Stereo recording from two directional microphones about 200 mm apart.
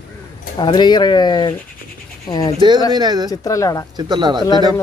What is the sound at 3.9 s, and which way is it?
Speech, 20° right (ahead or behind).